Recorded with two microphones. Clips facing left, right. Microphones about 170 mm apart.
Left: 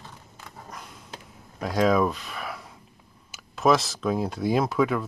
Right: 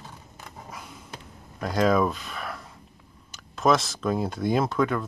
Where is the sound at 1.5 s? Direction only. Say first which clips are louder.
Even; centre (ahead or behind).